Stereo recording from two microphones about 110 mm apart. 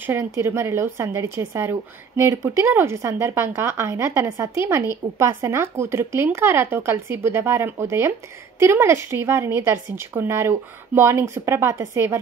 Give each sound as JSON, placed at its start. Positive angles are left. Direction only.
{"t": 0.0, "sound": "speech", "side_deg": -20}